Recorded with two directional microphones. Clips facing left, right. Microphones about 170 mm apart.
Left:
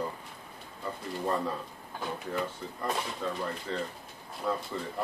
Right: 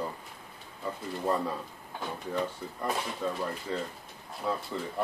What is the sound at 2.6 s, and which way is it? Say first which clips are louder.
Speech: right 1 dB; 5° right (ahead or behind).